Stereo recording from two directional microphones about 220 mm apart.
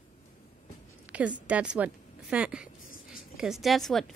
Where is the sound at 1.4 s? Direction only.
5° right (ahead or behind).